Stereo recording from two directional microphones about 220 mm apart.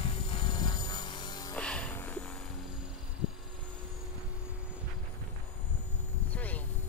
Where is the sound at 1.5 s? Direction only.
5° left (ahead or behind).